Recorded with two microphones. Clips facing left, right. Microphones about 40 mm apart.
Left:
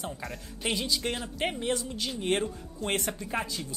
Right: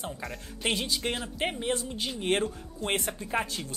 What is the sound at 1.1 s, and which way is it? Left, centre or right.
Speech, centre.